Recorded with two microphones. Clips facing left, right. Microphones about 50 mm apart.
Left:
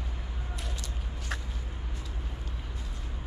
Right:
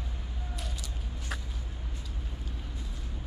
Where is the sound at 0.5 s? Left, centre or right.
Centre.